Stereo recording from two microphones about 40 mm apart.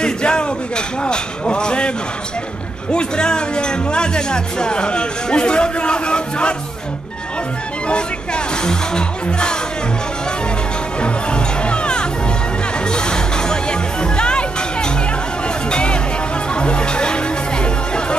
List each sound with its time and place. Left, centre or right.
0.0 s speech: left
7.9 s speech: left
11.0 s music: left